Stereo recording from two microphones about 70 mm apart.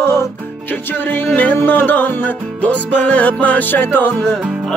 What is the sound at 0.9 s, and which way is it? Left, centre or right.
Music, left.